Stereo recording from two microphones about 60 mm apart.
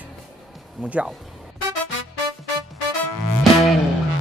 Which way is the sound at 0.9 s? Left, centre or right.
Right.